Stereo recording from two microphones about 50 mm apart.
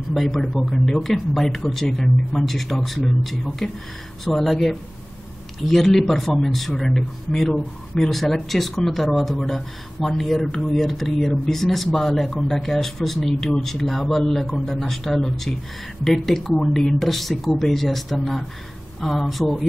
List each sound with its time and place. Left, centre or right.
0.1 s speech: centre
3.6 s speech: centre
7.5 s speech: centre
8.1 s speech: centre